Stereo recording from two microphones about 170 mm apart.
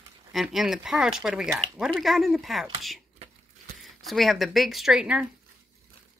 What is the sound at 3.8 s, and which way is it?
Speech, centre (ahead or behind).